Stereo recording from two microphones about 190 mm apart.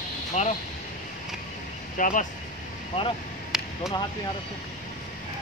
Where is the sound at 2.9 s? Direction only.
30° left (ahead or behind).